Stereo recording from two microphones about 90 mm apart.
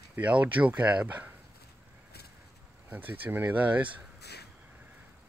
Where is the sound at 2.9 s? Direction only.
20° right (ahead or behind).